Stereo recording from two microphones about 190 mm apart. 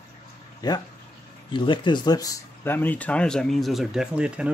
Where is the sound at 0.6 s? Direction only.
20° left (ahead or behind).